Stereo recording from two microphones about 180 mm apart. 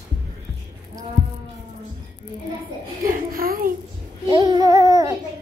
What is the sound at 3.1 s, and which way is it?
Speech, 55° right (ahead or behind).